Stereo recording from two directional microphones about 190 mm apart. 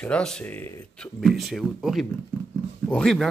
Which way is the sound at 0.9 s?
Centre (ahead or behind).